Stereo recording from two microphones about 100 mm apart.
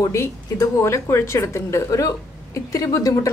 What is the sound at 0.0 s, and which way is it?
Speech, 30° left (ahead or behind).